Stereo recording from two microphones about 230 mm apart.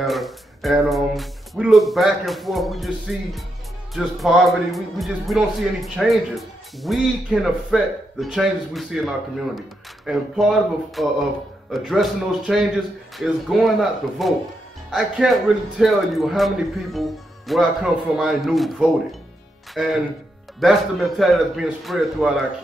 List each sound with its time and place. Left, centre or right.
0.0 s a man's voice: centre